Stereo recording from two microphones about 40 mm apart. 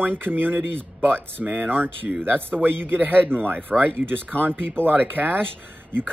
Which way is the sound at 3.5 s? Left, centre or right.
Right.